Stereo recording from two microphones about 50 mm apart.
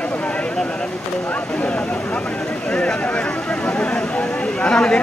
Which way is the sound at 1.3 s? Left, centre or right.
Left.